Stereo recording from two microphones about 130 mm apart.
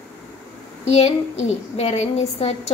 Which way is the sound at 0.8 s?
55° left (ahead or behind).